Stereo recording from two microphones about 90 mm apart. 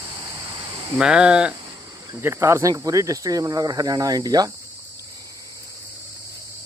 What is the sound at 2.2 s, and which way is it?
Speech, 30° right (ahead or behind).